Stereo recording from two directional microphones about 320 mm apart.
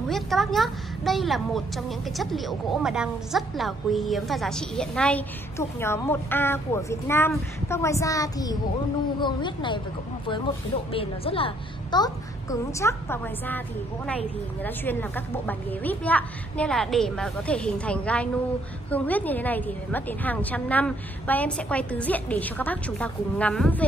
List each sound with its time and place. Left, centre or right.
0.1 s a woman's voice: centre
14.6 s a woman's voice: centre